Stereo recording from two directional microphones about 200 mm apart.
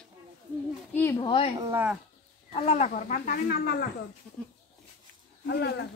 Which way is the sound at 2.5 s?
35° left (ahead or behind).